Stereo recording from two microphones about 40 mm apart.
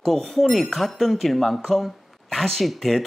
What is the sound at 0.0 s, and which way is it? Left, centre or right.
Speech, centre.